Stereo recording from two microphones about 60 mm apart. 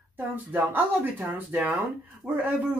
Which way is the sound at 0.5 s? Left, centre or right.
Right.